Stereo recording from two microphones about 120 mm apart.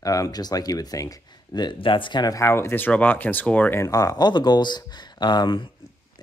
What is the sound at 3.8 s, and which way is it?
Speech, 30° left (ahead or behind).